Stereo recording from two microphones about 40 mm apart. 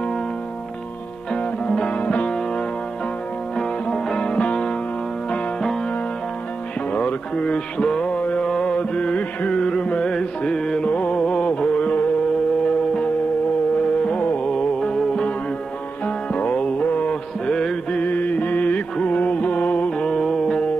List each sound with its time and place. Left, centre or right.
1.9 s music: left
3.5 s music: centre
6.9 s music: left
8.5 s mantra: centre
8.7 s music: left
10.9 s music: left
11.1 s music: left
14.4 s music: left
16.3 s music: left
16.8 s mantra: left
17.1 s mantra: centre
17.9 s mantra: left
19.0 s music: left
20.0 s music: centre